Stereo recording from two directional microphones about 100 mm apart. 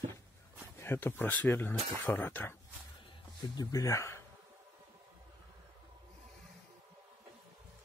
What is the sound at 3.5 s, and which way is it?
Speech, 35° left (ahead or behind).